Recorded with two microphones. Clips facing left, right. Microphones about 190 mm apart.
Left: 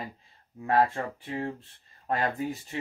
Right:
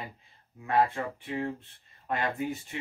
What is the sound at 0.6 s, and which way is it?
Speech, 35° left (ahead or behind).